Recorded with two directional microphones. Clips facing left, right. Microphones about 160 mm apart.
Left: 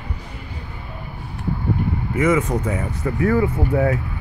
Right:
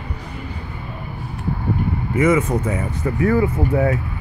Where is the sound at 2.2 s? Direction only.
5° right (ahead or behind).